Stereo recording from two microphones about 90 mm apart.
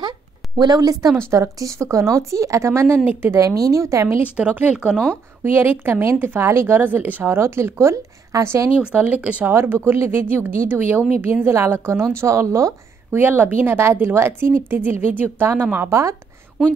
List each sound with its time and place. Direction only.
0.6 s speech: 45° right (ahead or behind)
1.3 s speech: 35° right (ahead or behind)
4.2 s a woman's voice: 15° right (ahead or behind)
4.9 s speech: 15° left (ahead or behind)
5.4 s speech: 25° right (ahead or behind)
8.7 s speech: 15° right (ahead or behind); by 12.7 s 35° right (ahead or behind)
13.1 s speech: 25° right (ahead or behind)